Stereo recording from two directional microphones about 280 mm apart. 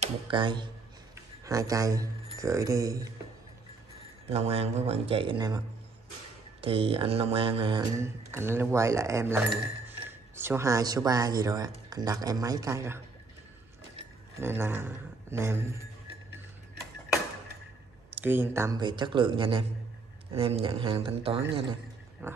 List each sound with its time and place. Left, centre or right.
0.0 s speech: centre
4.3 s speech: right
6.6 s speech: centre
14.4 s a man's voice: centre
18.1 s speech: centre
22.2 s a sound: centre